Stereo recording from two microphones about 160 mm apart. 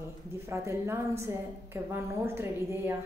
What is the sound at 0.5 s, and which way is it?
A woman's voice, 15° right (ahead or behind).